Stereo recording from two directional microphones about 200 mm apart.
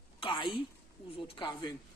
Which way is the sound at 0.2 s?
25° left (ahead or behind).